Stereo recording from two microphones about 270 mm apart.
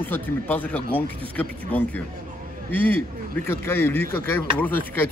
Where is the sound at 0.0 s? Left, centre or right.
Centre.